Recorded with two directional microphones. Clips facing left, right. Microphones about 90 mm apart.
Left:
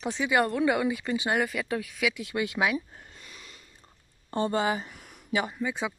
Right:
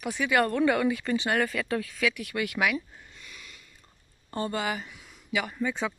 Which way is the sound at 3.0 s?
40° left (ahead or behind).